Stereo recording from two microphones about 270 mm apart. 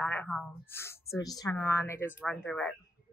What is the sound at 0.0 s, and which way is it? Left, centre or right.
A woman's voice, centre.